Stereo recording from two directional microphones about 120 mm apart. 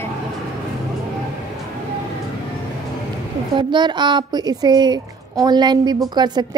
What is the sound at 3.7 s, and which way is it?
A woman's voice, 40° right (ahead or behind).